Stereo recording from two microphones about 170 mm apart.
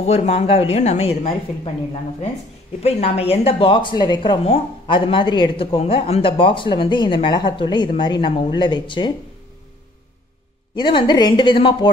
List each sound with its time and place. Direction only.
0.0 s a woman's voice: 35° left (ahead or behind)
2.8 s speech: 35° left (ahead or behind)
10.8 s speech: 30° left (ahead or behind)